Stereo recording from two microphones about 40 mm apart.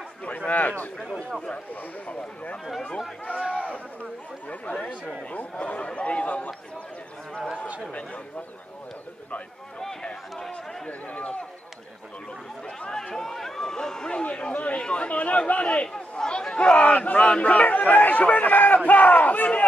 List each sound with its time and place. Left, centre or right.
0.5 s a man's voice: left
1.0 s speech: centre
3.5 s a sound: left
4.5 s speech: left
12.9 s speech: centre
14.2 s speech: left
16.7 s a man's voice: left